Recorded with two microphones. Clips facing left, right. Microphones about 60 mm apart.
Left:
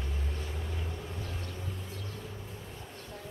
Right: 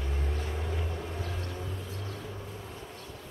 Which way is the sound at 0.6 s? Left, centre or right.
Right.